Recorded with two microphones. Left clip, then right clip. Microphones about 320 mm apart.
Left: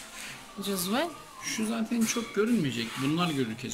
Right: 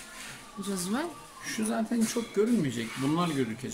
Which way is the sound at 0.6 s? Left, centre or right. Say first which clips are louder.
Left 3 dB; centre.